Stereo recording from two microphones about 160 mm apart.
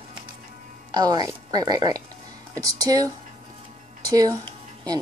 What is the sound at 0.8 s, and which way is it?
Speech, 25° right (ahead or behind).